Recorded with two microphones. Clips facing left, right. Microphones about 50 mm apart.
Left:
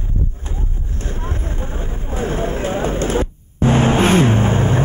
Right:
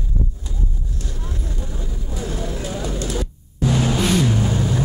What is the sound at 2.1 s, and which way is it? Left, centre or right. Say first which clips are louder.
Vehicle: left 7 dB; left.